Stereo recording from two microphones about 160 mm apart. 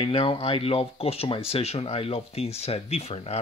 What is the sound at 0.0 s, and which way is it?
Speech, 35° left (ahead or behind).